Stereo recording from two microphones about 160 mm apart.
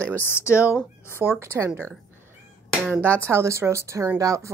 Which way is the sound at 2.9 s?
15° right (ahead or behind).